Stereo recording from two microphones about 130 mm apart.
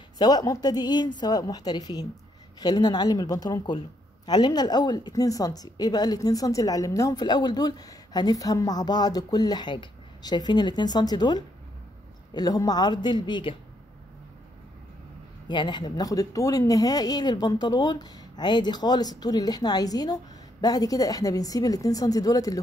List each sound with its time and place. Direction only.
0.2 s a woman's voice: 30° left (ahead or behind)
15.4 s a woman's voice: 35° left (ahead or behind)